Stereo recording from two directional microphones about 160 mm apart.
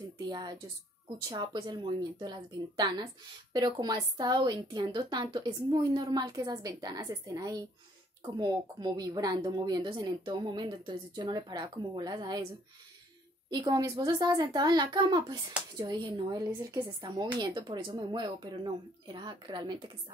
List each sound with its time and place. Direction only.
0.3 s speech: 25° right (ahead or behind)
13.5 s speech: 25° right (ahead or behind)